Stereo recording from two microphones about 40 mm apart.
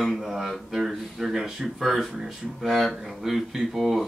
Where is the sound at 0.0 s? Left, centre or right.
Centre.